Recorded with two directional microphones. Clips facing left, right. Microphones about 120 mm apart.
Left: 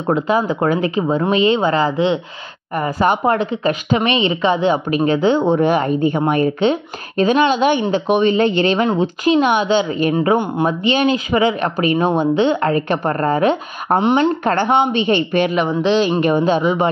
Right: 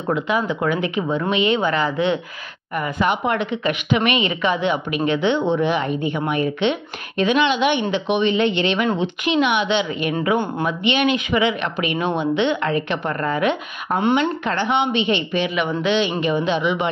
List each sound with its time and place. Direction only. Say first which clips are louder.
0.1 s a woman's voice: left 4 dB; 35° left (ahead or behind)